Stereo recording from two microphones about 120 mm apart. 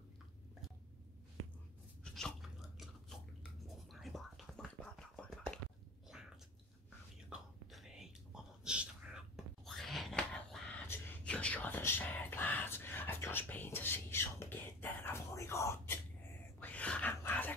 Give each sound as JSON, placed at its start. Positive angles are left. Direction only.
{"t": 2.0, "sound": "biting", "side_deg": 5}
{"t": 3.6, "sound": "whispering", "side_deg": 0}
{"t": 6.1, "sound": "a sound", "side_deg": -5}
{"t": 7.2, "sound": "whispering", "side_deg": -5}
{"t": 16.5, "sound": "wail", "side_deg": 10}
{"t": 17.1, "sound": "a sound", "side_deg": 20}